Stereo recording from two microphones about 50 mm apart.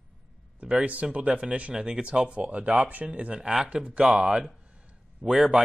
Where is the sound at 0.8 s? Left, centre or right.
Right.